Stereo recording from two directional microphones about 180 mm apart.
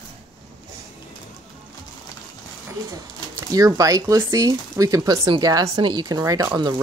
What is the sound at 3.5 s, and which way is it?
Speech, 20° right (ahead or behind).